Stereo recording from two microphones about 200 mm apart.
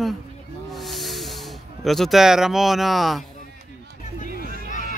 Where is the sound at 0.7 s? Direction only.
Centre (ahead or behind).